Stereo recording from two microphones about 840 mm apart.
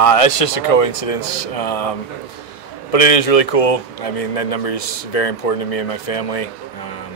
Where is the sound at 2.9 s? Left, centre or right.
Left.